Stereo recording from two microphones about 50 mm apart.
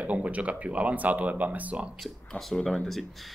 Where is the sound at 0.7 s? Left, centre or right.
Right.